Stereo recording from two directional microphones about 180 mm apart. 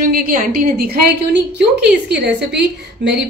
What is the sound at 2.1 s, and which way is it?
A woman's voice, 70° right (ahead or behind).